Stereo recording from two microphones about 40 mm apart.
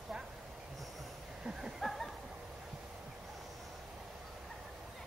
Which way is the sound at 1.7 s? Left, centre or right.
Centre.